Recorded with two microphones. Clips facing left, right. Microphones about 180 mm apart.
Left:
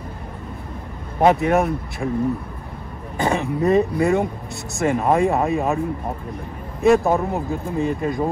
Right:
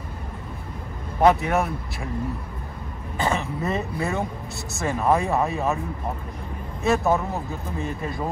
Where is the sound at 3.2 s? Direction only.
15° left (ahead or behind).